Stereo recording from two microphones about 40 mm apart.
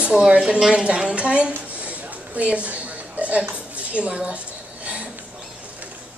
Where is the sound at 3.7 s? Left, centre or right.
Right.